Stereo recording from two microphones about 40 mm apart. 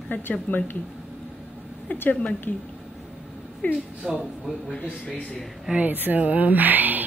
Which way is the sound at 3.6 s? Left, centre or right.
Left.